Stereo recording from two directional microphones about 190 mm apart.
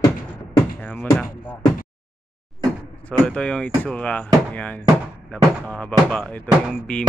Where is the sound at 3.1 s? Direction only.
5° left (ahead or behind).